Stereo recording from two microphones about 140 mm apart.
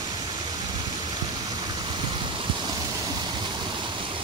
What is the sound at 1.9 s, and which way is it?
Stream, 35° right (ahead or behind).